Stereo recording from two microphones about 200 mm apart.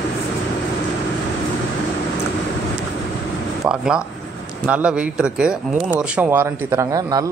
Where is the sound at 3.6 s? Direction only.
5° right (ahead or behind).